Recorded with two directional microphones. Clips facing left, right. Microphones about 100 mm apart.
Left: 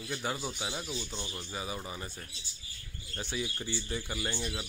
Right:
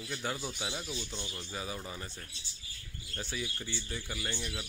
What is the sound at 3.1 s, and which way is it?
Speech, 20° left (ahead or behind).